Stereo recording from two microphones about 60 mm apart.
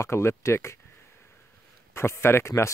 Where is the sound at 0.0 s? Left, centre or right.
Left.